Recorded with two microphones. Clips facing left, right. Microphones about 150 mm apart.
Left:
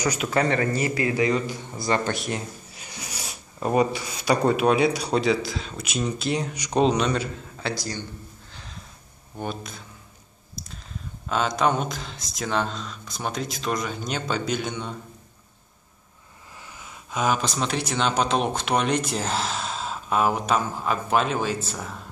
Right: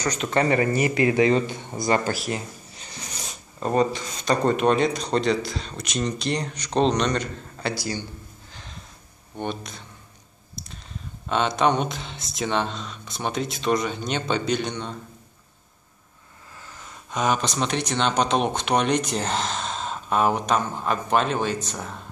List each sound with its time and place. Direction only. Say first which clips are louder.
0.0 s speech: even; 5° left (ahead or behind)
0.5 s a man's voice: right 2 dB; 10° right (ahead or behind)
2.0 s speech: right 1 dB; centre (ahead or behind)
2.8 s speech: even; 10° left (ahead or behind); by 8.5 s 10° right (ahead or behind)
9.4 s speech: right 2 dB; centre (ahead or behind)
10.6 s a sound: even; centre (ahead or behind)
11.2 s speech: right 1 dB; centre (ahead or behind)
16.6 s speech: right 1 dB; 10° left (ahead or behind)